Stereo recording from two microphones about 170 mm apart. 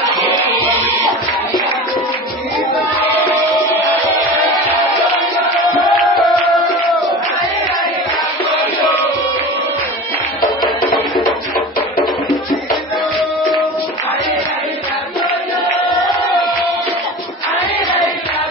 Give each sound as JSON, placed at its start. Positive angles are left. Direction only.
{"t": 3.3, "sound": "music", "side_deg": 10}
{"t": 5.9, "sound": "music", "side_deg": 0}